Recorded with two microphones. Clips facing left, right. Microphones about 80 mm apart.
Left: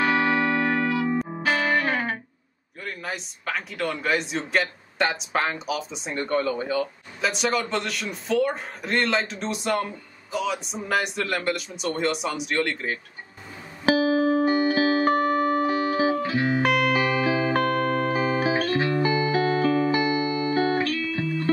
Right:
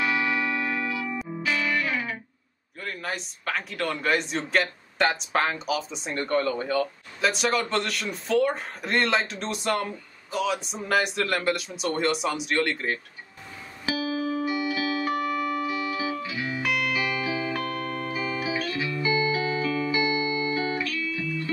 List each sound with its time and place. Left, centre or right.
0.0 s music: left
2.8 s speech: centre
13.8 s music: left